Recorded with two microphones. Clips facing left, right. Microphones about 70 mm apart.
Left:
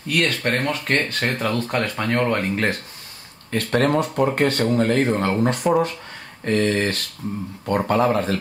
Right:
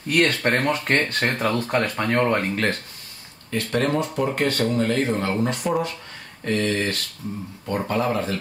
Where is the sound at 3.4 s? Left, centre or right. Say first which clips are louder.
Left 3 dB; left.